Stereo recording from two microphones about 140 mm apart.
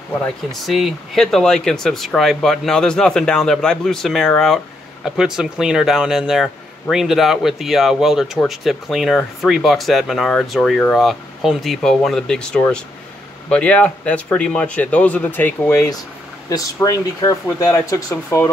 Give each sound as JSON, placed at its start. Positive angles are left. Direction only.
{"t": 0.5, "sound": "speech", "side_deg": 0}